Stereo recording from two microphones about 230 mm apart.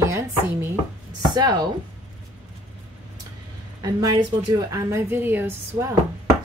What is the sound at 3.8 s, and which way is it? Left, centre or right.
A woman's voice, centre.